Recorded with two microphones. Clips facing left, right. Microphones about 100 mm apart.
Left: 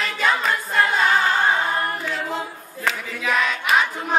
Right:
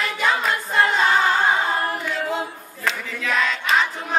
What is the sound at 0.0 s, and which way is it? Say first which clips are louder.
A capella: even; 10° right (ahead or behind).